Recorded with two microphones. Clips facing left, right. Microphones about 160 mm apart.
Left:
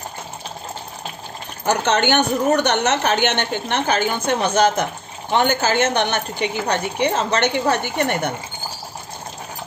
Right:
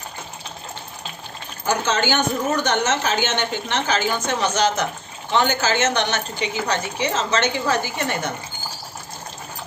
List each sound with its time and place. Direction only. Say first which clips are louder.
1.7 s a woman's voice: left 3 dB; 65° left (ahead or behind)